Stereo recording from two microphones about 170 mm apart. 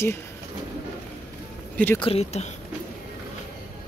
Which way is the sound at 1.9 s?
35° left (ahead or behind).